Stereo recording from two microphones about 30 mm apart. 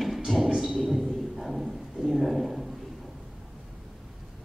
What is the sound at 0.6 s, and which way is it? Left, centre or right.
A man's voice, centre.